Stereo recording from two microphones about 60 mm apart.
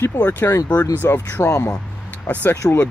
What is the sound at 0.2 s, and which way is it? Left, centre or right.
Speech, left.